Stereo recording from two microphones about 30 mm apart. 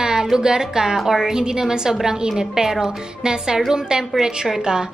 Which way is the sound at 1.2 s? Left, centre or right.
Right.